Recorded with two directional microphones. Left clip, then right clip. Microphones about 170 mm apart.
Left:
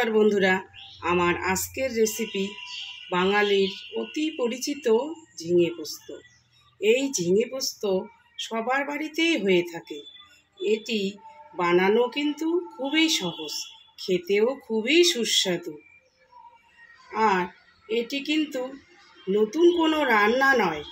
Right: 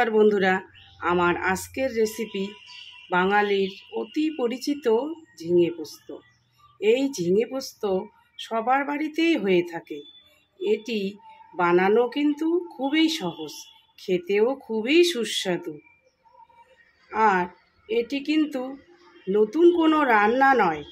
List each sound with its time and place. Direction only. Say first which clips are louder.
0.0 s speech: right 2 dB; 15° right (ahead or behind)
6.8 s speech: right 1 dB; 15° right (ahead or behind)
17.1 s speech: right 2 dB; 20° right (ahead or behind)